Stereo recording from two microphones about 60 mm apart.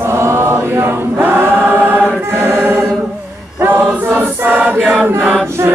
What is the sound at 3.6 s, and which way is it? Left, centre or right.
Choir, right.